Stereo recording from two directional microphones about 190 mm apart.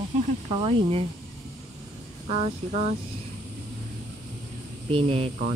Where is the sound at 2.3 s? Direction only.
35° right (ahead or behind).